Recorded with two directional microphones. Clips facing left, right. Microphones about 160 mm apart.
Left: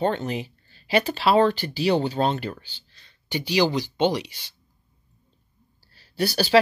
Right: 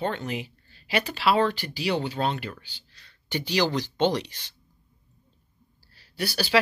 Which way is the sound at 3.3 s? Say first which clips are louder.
Left 3 dB; 10° left (ahead or behind).